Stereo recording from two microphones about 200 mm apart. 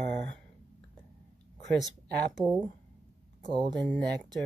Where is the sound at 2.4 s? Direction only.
15° right (ahead or behind).